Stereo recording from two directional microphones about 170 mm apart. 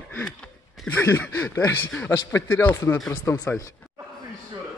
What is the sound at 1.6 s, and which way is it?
Speech, 10° left (ahead or behind).